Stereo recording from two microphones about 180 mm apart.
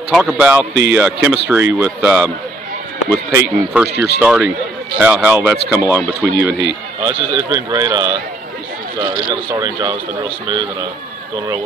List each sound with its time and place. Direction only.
0.1 s speech: 5° right (ahead or behind)
3.3 s speech: 5° right (ahead or behind)
3.9 s speech: 65° left (ahead or behind)
4.2 s speech: 10° right (ahead or behind)
6.3 s speech: 70° left (ahead or behind)
7.0 s speech: 20° right (ahead or behind)